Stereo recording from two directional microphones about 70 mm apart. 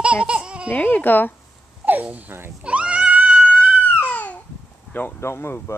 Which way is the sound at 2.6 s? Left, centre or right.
Centre.